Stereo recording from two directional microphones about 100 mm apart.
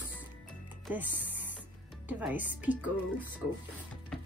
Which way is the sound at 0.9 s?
15° right (ahead or behind).